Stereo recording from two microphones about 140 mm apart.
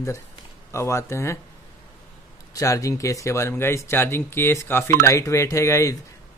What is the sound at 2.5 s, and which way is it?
A man's voice, 25° left (ahead or behind).